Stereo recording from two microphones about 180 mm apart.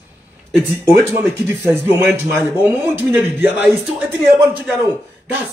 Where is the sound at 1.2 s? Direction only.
10° right (ahead or behind).